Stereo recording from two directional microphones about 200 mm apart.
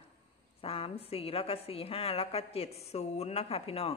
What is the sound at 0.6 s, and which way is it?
A woman's voice, 30° left (ahead or behind).